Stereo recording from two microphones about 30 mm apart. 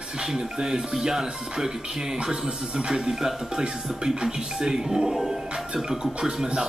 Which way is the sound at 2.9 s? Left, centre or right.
Centre.